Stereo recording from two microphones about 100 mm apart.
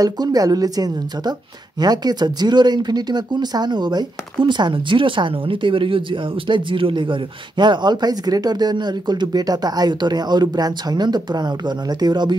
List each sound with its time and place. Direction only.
0.0 s a woman's voice: 40° right (ahead or behind)